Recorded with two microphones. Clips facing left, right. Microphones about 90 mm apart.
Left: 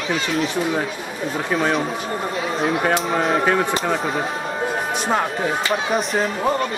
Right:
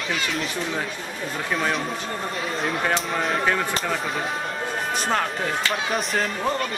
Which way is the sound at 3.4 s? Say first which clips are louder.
Left 4 dB; 25° left (ahead or behind).